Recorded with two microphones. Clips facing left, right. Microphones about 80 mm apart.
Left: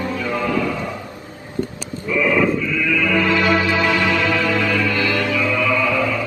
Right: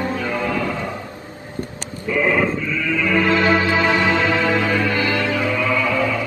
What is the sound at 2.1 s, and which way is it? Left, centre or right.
Sheep, right.